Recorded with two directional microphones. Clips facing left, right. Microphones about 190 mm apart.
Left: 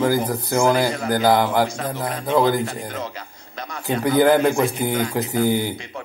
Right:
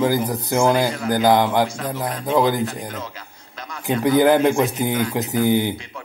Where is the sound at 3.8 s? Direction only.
15° right (ahead or behind).